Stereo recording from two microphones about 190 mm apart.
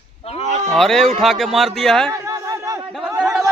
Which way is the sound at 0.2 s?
30° left (ahead or behind).